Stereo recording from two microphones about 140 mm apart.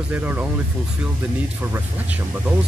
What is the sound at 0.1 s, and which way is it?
Speech, 10° right (ahead or behind).